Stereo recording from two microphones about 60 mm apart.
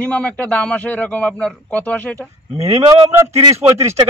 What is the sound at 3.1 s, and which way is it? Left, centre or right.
Speech, right.